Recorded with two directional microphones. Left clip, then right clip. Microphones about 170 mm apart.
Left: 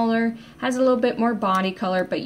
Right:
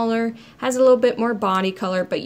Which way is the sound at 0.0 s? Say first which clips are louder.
Right 1 dB; 40° right (ahead or behind).